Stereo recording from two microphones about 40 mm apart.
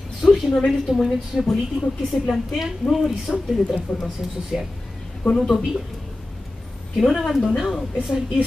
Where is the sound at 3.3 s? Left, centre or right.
Centre.